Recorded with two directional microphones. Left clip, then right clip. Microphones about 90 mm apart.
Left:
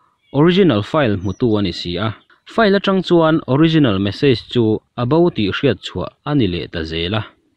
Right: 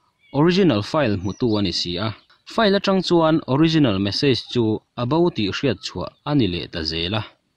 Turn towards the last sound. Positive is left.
turn(degrees=20)  # may be behind; listen again after turning